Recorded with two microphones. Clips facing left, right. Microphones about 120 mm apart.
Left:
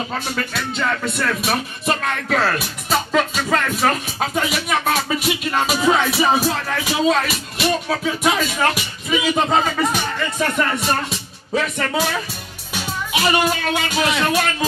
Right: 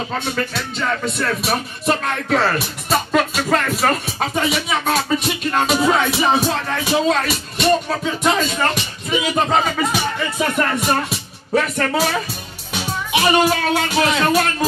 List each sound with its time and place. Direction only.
1.1 s music: centre (ahead or behind)
6.0 s speech: 25° right (ahead or behind)
7.1 s music: centre (ahead or behind)
12.7 s speech: 5° right (ahead or behind)